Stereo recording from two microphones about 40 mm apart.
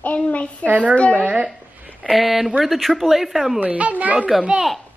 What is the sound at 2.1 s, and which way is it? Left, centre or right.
Speech, centre.